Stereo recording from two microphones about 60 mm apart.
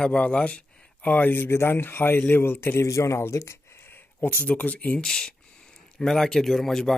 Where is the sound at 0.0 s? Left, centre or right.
Centre; by 2.9 s left.